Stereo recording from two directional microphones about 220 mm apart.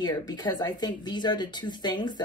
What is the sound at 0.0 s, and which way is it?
Speech, 20° left (ahead or behind).